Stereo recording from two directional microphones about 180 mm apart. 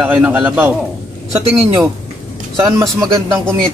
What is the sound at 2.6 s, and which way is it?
Speech, 20° right (ahead or behind).